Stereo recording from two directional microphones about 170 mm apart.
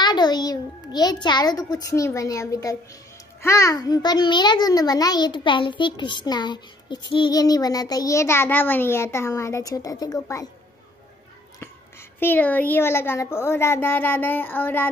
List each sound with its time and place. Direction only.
0.0 s a child's voice: 25° left (ahead or behind)
12.2 s speech: 10° left (ahead or behind)